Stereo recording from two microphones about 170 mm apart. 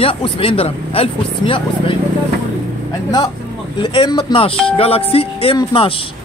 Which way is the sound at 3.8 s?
25° left (ahead or behind).